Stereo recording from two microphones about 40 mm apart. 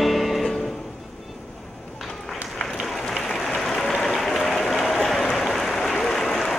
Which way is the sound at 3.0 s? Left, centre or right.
Centre.